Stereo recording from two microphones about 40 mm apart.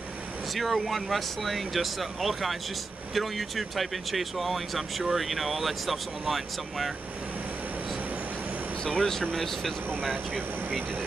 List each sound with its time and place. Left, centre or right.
0.6 s speech: centre
8.8 s speech: centre